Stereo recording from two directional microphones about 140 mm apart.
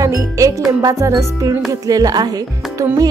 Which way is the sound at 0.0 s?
25° right (ahead or behind).